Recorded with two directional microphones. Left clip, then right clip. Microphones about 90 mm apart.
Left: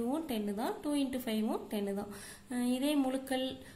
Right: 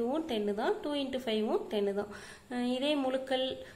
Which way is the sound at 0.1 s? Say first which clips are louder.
Right 4 dB; 25° left (ahead or behind).